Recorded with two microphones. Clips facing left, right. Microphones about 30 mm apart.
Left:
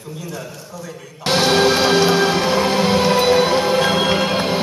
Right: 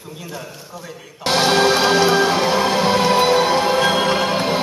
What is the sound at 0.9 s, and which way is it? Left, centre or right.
Music, centre.